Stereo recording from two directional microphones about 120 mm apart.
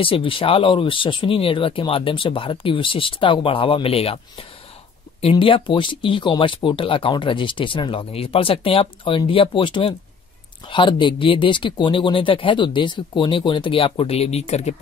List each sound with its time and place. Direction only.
0.0 s speech: 45° left (ahead or behind); by 14.8 s 65° left (ahead or behind)